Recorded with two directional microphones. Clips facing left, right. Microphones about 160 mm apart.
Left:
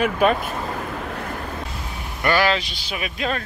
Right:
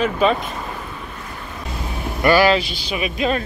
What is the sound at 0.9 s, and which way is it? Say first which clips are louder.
Vehicle: left 5 dB; 70° left (ahead or behind).